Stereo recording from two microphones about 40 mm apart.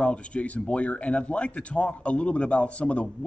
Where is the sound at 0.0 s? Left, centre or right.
Left.